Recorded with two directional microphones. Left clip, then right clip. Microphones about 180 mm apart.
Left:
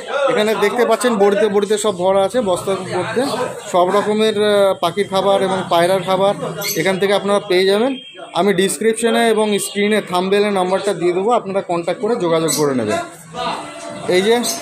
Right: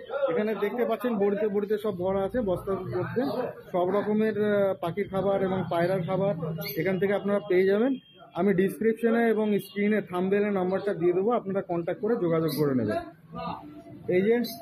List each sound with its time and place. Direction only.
0.3 s speech: 25° left (ahead or behind)
3.7 s speech: 20° left (ahead or behind)
14.1 s speech: 25° left (ahead or behind)